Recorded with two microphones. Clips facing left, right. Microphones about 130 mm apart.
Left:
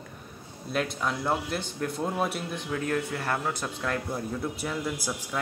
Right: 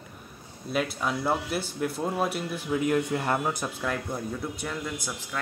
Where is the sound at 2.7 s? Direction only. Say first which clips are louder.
Right 5 dB; 15° right (ahead or behind).